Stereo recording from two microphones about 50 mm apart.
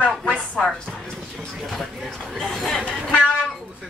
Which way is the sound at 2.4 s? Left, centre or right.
Centre.